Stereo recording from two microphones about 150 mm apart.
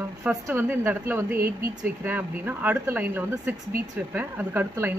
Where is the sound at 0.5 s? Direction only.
15° right (ahead or behind).